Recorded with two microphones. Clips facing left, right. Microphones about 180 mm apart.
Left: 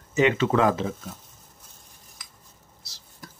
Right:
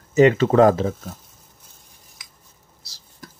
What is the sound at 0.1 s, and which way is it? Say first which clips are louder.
Speech: right 6 dB; 40° right (ahead or behind).